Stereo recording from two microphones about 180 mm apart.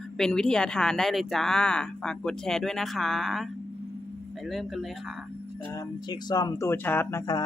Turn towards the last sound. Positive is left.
turn(degrees=20)  # may be behind; listen again after turning